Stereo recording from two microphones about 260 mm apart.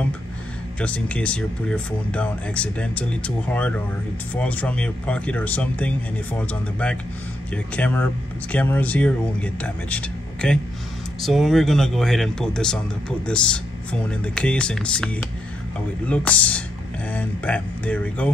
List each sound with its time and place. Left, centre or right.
0.7 s speech: centre
16.1 s speech: centre